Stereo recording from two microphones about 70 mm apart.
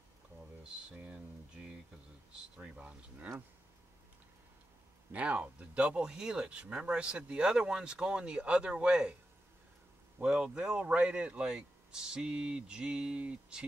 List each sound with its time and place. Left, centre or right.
0.8 s speech: centre
2.5 s speech: centre
5.1 s speech: centre
10.2 s speech: centre